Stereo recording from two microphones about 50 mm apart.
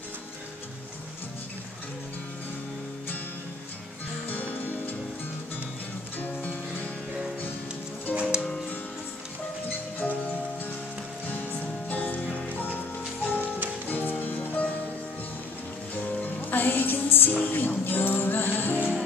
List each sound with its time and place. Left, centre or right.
4.3 s music: left
6.1 s music: left
8.1 s music: right
9.7 s music: left
11.2 s music: left
15.9 s music: left